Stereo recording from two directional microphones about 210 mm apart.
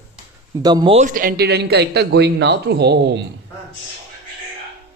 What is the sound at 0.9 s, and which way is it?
Speech, 40° right (ahead or behind).